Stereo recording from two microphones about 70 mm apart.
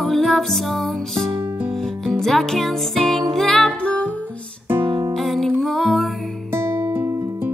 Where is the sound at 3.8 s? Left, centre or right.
Centre.